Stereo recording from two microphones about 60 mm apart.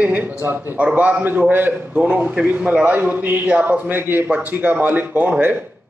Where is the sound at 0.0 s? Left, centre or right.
Right.